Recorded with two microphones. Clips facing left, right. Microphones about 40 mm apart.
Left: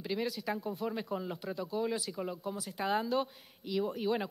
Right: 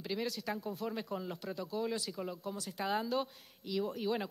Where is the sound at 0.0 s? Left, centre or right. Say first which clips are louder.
Left 3 dB; centre.